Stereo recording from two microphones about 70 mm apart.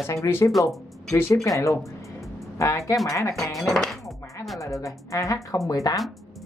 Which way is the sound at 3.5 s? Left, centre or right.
Centre.